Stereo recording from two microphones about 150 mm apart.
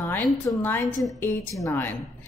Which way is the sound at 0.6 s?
15° left (ahead or behind).